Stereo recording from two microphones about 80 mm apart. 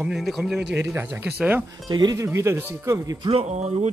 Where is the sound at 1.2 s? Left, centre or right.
Centre.